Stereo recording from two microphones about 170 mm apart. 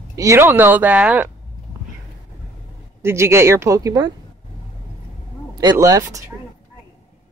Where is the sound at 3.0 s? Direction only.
15° right (ahead or behind).